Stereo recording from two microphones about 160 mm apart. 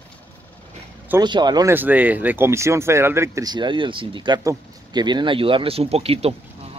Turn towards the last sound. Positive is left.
turn(degrees=-40)  # may be behind; listen again after turning